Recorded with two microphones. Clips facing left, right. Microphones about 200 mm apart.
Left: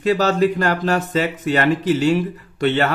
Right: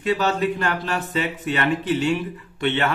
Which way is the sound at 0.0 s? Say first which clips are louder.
Left 5 dB; 40° left (ahead or behind).